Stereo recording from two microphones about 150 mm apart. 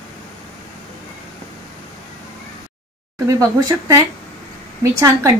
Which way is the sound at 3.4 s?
20° right (ahead or behind).